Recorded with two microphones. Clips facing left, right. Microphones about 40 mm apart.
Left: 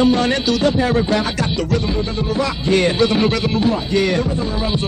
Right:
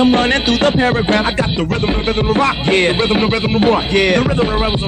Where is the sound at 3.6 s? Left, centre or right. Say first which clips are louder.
Right 6 dB; right.